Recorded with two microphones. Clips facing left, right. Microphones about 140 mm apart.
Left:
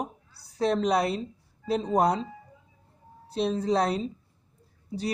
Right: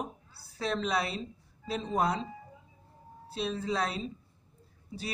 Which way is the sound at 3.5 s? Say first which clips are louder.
Left 7 dB; 35° left (ahead or behind).